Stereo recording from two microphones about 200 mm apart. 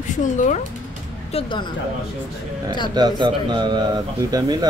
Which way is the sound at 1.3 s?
25° left (ahead or behind).